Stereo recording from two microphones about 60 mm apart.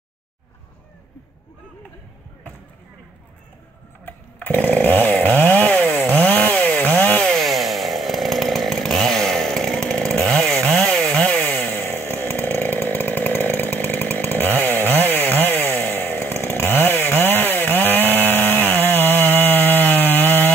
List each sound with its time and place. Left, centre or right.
4.0 s chainsaw: left
4.6 s chainsaw: left
7.2 s chainsaw: centre; by 20.5 s left